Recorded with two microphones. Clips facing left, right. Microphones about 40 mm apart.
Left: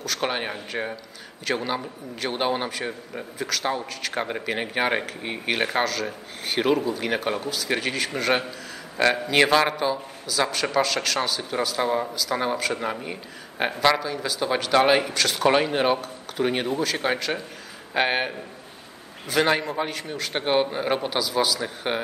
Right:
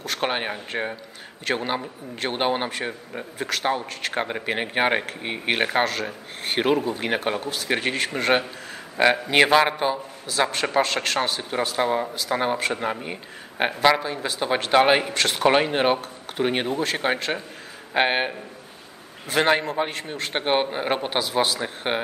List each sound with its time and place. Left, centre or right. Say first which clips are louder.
0.0 s speech: right 1 dB; right
9.8 s a man's voice: right 1 dB; right
11.8 s speech: right 2 dB; centre
12.7 s speech: right 1 dB; centre
13.9 s speech: even; right
15.1 s speech: right 1 dB; right
19.3 s speech: right 1 dB; right